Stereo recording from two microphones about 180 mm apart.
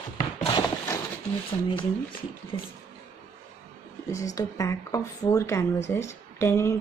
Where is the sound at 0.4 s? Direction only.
25° left (ahead or behind).